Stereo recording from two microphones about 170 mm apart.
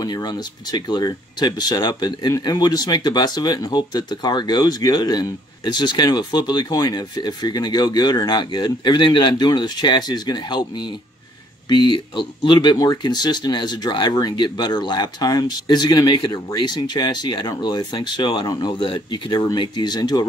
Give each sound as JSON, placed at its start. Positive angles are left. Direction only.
{"t": 0.0, "sound": "speech", "side_deg": 25}